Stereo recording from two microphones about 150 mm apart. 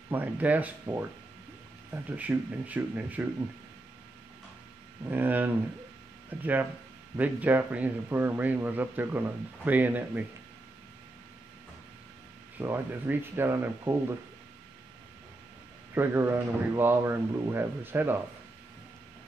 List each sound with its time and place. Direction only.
0.1 s a man's voice: 10° right (ahead or behind)
2.0 s a man's voice: 10° right (ahead or behind)
5.0 s a man's voice: 15° right (ahead or behind)
12.5 s a man's voice: 15° right (ahead or behind)
15.9 s a man's voice: 15° right (ahead or behind)